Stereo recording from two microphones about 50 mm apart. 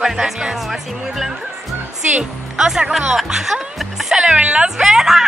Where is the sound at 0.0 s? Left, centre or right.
Centre.